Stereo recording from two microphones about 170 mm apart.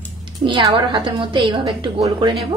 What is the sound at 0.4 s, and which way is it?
A woman's voice, 30° right (ahead or behind).